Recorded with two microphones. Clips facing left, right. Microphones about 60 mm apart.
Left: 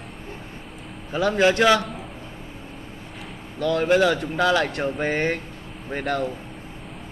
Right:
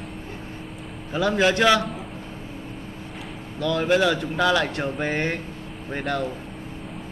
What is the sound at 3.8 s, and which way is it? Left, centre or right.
Speech, centre.